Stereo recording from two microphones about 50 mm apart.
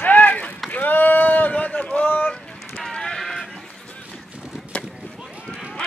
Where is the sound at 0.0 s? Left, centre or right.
Left.